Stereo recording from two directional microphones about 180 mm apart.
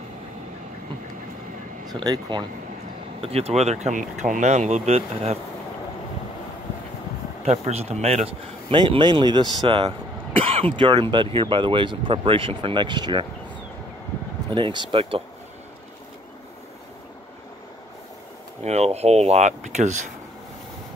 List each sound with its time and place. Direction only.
1.9 s speech: 25° right (ahead or behind)
3.2 s speech: 35° right (ahead or behind)
7.4 s speech: 35° right (ahead or behind)
14.5 s speech: 25° right (ahead or behind)
18.6 s speech: 35° right (ahead or behind)